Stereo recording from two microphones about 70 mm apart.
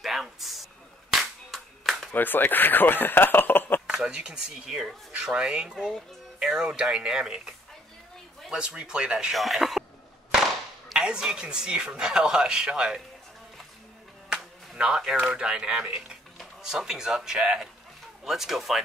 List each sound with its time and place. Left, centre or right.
0.0 s a sound: centre
1.1 s clapping: centre
2.1 s speech: left
3.8 s speech: centre
9.3 s speech: centre
11.0 s speech: centre
14.3 s speech: centre